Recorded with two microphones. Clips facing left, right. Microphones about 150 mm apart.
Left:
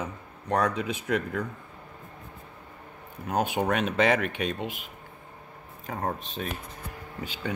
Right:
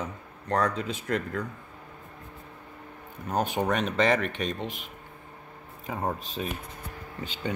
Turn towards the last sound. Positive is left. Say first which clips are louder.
# even
turn(degrees=5)  # may be behind; listen again after turning